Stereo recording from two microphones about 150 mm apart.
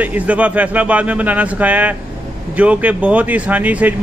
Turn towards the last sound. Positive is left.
turn(degrees=-10)  # may be behind; listen again after turning